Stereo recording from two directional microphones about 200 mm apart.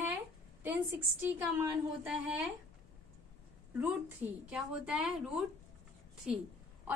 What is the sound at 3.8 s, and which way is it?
A woman's voice, 5° right (ahead or behind).